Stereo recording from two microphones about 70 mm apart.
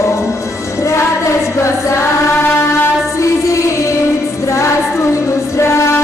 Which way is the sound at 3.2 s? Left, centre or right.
Left.